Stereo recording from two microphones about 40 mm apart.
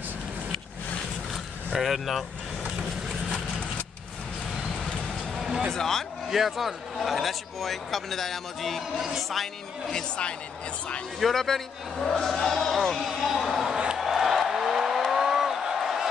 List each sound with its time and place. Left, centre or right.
1.8 s a man's voice: centre
4.7 s vehicle: centre
5.7 s speech: centre
6.3 s a man's voice: centre
9.9 s speech: left
11.1 s speech: centre
12.7 s a man's voice: centre
13.9 s a sound: centre